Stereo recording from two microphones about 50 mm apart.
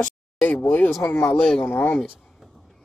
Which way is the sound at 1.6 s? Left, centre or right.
Left.